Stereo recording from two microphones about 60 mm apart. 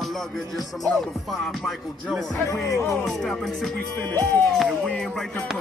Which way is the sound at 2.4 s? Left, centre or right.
Left.